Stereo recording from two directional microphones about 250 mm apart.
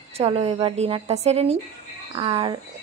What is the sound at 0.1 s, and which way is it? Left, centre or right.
Speech, right.